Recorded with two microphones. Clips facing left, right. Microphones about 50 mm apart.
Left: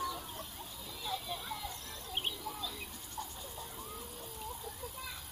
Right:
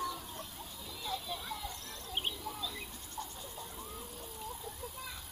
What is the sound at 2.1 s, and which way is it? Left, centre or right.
Bird, centre.